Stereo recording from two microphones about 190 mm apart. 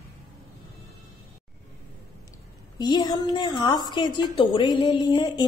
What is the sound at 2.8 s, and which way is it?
A woman's voice, 20° left (ahead or behind).